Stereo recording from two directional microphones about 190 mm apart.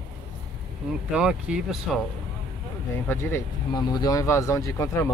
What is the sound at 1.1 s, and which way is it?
Speech, 5° right (ahead or behind).